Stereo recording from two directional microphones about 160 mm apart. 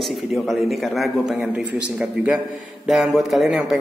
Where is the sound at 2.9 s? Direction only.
Centre (ahead or behind).